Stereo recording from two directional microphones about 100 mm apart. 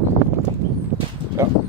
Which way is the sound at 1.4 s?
25° right (ahead or behind).